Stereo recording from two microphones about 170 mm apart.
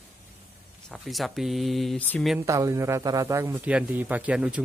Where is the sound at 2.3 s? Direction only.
20° right (ahead or behind).